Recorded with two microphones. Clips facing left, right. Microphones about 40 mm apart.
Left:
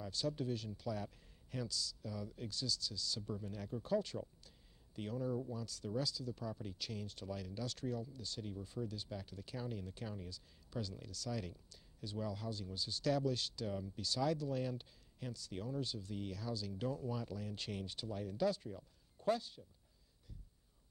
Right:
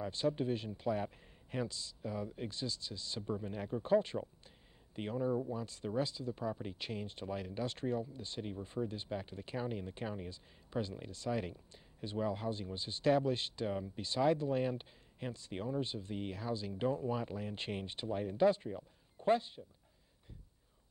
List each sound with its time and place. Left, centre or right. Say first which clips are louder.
0.0 s speech: right 6 dB; right